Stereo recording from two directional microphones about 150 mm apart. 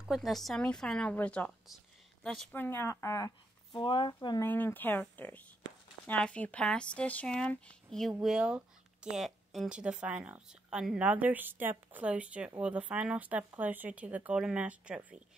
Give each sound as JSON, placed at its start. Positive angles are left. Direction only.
{"t": 0.1, "sound": "speech", "side_deg": 0}
{"t": 4.5, "sound": "speech", "side_deg": 10}